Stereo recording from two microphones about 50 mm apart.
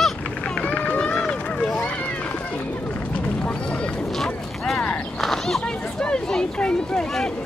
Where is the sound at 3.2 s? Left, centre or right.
Left.